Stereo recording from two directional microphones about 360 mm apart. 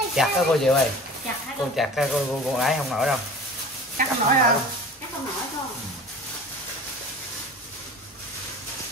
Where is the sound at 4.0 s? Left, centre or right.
Right.